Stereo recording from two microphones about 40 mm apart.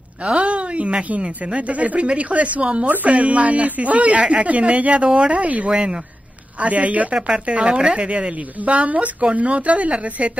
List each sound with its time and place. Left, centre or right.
0.3 s speech: right
5.7 s speech: right
6.6 s speech: right
7.2 s speech: centre
7.4 s speech: right